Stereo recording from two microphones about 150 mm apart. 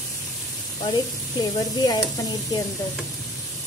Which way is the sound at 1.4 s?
25° left (ahead or behind).